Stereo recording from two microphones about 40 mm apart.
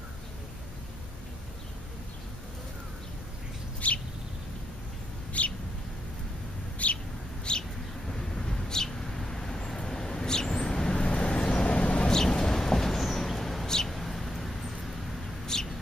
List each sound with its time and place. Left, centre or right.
3.8 s bird: left
5.4 s bird: left
6.8 s bird: left
7.5 s vehicle: left
8.1 s vehicle: centre
12.1 s a sound: centre
15.5 s bird: centre